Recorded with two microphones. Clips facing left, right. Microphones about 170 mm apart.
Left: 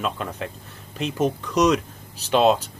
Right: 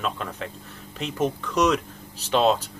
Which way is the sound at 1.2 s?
15° left (ahead or behind).